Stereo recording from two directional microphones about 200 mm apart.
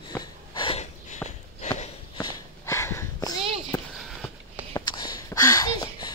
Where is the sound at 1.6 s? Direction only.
30° left (ahead or behind).